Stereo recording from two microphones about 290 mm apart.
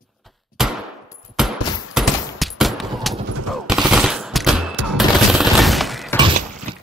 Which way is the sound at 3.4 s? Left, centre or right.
Centre.